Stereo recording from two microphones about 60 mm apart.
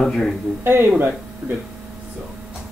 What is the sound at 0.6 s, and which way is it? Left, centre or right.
Speech, right.